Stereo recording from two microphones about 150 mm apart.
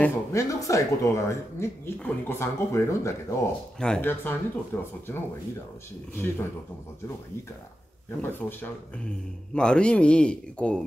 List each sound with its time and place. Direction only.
0.0 s speech: 20° left (ahead or behind)
8.2 s speech: 15° left (ahead or behind)